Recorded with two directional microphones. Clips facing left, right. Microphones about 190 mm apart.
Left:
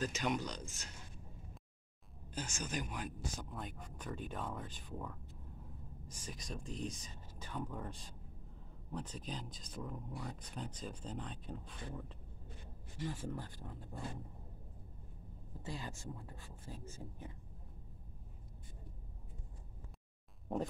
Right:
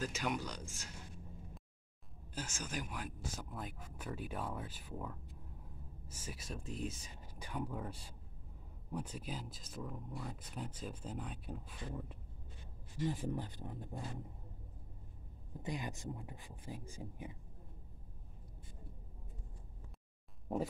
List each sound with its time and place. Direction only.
0.0 s speech: 10° right (ahead or behind)
2.3 s speech: 5° right (ahead or behind)
15.6 s speech: 15° right (ahead or behind)